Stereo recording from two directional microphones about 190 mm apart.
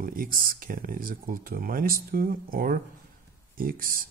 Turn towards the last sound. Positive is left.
turn(degrees=-50)  # may be behind; listen again after turning